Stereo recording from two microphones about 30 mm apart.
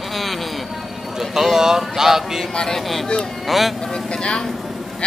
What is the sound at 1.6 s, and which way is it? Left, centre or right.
Speech, centre.